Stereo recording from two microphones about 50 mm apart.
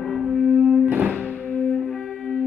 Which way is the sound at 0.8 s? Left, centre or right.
Right.